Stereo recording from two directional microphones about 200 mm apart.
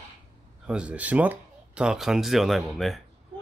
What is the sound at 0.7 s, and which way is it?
Speech, 5° right (ahead or behind).